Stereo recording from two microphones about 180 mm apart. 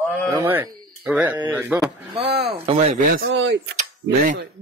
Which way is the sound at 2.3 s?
65° right (ahead or behind).